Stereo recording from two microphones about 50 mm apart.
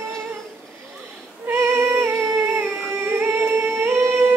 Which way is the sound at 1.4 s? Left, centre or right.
Right.